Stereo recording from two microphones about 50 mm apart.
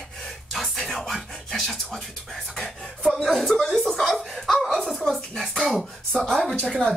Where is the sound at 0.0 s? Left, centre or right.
Centre.